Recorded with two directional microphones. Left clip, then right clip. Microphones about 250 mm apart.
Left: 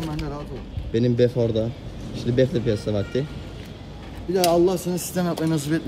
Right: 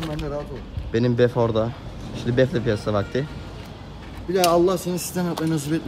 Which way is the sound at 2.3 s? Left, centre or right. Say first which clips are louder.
Right 1 dB; centre.